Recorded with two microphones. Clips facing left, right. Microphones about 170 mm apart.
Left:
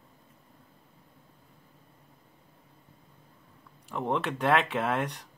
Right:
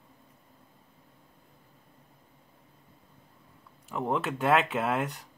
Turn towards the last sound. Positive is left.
turn(degrees=0)  # may be behind; listen again after turning